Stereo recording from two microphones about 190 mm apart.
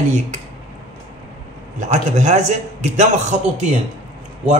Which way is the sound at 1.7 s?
40° right (ahead or behind).